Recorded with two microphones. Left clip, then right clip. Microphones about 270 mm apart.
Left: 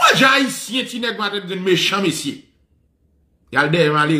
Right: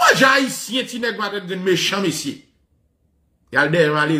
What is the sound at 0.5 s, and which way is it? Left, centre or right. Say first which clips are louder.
Speech: even; centre.